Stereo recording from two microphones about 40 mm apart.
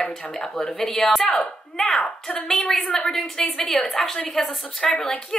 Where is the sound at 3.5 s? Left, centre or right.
Centre.